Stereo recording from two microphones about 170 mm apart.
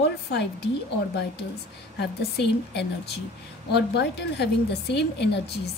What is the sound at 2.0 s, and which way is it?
A woman's voice, 80° left.